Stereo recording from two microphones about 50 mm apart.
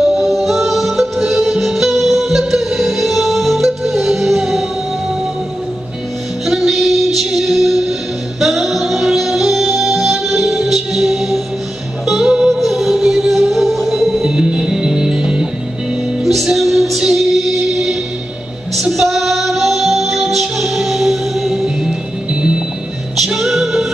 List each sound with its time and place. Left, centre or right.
0.0 s music: centre
6.4 s music: centre
12.5 s music: centre
14.3 s music: centre
16.4 s music: centre
22.3 s music: centre
23.1 s music: centre